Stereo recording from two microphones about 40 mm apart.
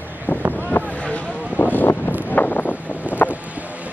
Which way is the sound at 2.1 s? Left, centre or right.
Left.